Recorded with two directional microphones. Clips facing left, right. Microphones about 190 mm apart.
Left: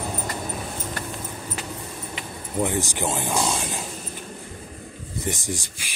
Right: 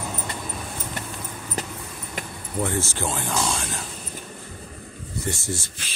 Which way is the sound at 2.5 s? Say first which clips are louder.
Left 1 dB; 15° left (ahead or behind).